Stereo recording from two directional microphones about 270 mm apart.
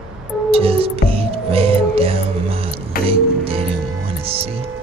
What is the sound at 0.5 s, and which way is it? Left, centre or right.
Music, right.